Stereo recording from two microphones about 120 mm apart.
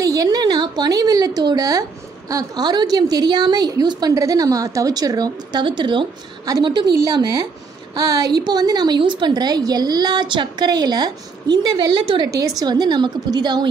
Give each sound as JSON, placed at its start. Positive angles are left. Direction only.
{"t": 0.0, "sound": "a woman's voice", "side_deg": -30}